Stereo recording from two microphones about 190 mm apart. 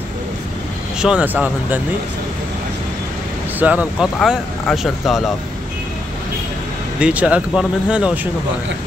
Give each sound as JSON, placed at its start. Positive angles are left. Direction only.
{"t": 0.9, "sound": "speech", "side_deg": -5}
{"t": 3.5, "sound": "speech", "side_deg": -10}
{"t": 7.0, "sound": "speech", "side_deg": -5}